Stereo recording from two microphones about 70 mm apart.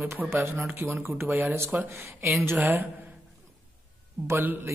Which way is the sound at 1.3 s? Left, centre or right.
Right.